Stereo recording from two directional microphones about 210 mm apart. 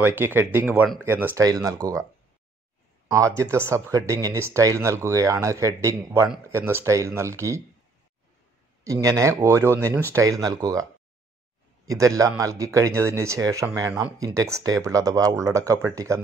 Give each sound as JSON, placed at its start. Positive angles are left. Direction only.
{"t": 0.0, "sound": "speech", "side_deg": -10}
{"t": 3.1, "sound": "speech", "side_deg": -15}
{"t": 8.8, "sound": "speech", "side_deg": -15}